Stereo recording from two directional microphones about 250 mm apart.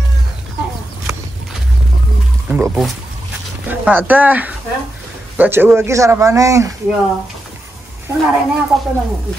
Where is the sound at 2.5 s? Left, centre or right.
Centre.